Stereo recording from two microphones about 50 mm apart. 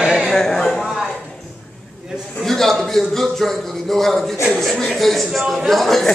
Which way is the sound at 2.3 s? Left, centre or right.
Centre.